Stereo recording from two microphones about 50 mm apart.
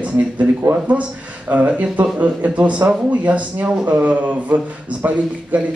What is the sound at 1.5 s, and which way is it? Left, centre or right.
Speech, right.